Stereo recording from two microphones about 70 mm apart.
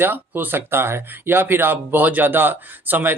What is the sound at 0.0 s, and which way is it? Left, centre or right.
Speech, right.